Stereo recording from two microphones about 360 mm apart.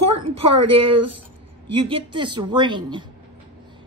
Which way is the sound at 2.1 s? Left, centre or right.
Centre.